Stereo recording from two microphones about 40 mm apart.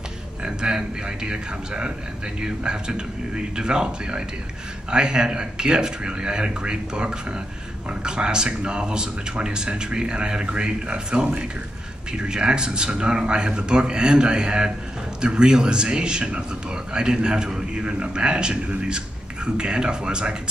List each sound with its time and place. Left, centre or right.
0.4 s a man's voice: right